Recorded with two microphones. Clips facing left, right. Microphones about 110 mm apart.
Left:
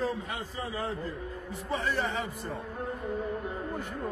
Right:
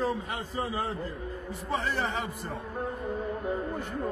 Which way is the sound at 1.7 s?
20° right (ahead or behind).